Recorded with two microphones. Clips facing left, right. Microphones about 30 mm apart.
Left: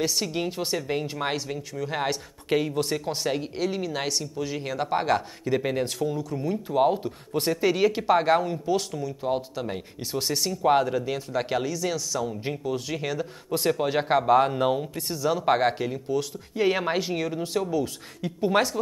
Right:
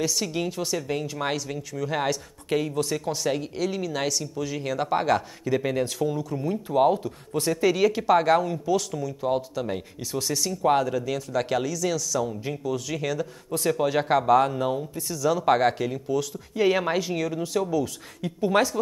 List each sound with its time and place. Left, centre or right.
0.0 s speech: centre
1.7 s speech: centre
2.0 s speech: left; by 6.9 s centre
7.0 s speech: left; by 9.8 s centre
10.1 s speech: left
13.5 s speech: left
13.8 s speech: centre
14.5 s speech: left
15.1 s speech: centre